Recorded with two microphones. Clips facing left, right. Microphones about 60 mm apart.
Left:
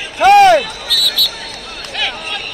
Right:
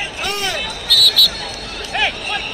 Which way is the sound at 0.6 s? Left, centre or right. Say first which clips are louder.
Right 1 dB; centre.